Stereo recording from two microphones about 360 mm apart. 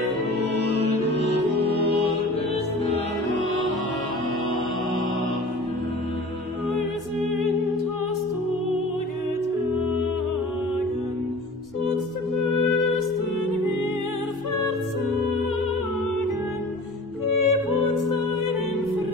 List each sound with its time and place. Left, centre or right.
17.3 s music: left